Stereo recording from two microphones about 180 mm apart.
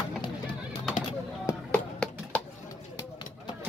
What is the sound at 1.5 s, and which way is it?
Music, 10° left (ahead or behind).